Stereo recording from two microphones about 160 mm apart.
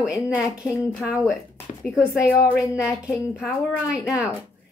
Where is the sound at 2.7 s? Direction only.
5° right (ahead or behind).